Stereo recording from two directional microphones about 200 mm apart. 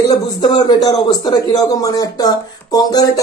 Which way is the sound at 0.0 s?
20° left (ahead or behind).